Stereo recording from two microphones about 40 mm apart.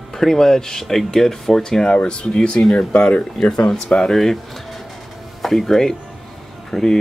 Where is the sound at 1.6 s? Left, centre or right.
Centre.